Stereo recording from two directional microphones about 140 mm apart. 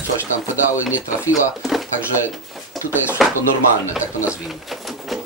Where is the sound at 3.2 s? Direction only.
Centre (ahead or behind).